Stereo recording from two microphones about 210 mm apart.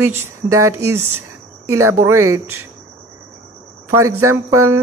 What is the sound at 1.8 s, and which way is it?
Speech, 90° right.